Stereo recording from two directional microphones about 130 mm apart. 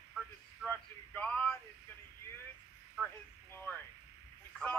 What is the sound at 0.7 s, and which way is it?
Male singing, 10° left (ahead or behind).